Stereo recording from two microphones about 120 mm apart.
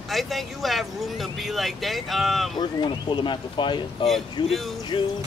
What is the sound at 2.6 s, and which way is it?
Speech, 40° left (ahead or behind).